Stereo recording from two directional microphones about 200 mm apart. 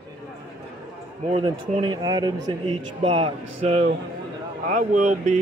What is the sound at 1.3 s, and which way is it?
A man's voice, 25° right (ahead or behind).